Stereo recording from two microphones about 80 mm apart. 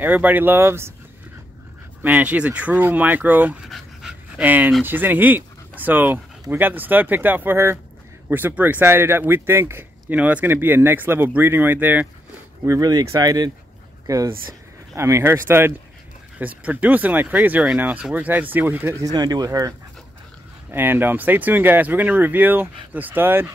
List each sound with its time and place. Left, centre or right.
0.0 s speech: right
2.0 s speech: centre
3.6 s dog: centre
4.4 s speech: right
10.1 s speech: centre
12.8 s speech: right
19.1 s speech: right
20.7 s speech: right